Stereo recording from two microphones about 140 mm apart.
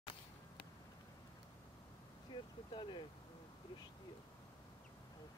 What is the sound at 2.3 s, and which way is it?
Vehicle, 35° left (ahead or behind).